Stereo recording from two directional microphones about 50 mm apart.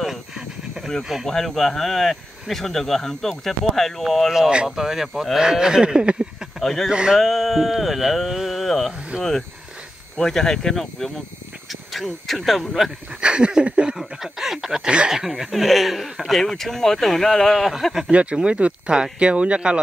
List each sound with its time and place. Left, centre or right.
1.2 s speech: centre
4.6 s speech: centre
5.4 s speech: centre
6.6 s speech: centre
6.9 s speech: centre
7.2 s speech: centre
10.1 s speech: centre
13.2 s speech: centre
13.9 s speech: centre
14.9 s speech: right
15.1 s speech: centre
18.1 s speech: right